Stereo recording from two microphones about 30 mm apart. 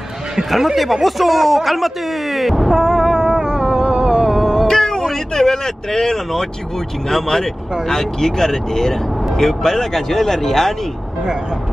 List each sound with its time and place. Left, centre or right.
1.0 s speech: centre
2.7 s a sound: centre
4.4 s music: centre
4.6 s music: centre
5.0 s speech: centre